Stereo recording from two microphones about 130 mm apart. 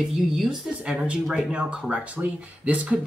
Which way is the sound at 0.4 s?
5° right (ahead or behind).